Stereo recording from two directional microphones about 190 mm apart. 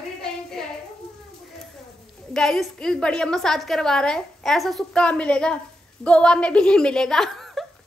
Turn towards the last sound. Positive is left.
turn(degrees=0)  # may be behind; listen again after turning